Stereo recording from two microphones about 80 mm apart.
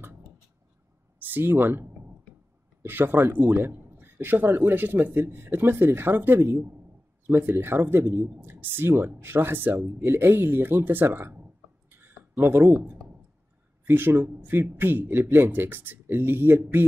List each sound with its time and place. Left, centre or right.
1.2 s a man's voice: right
11.3 s a sound: right
13.8 s a man's voice: right